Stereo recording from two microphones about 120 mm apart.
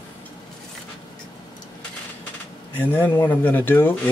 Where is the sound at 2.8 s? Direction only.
15° left (ahead or behind).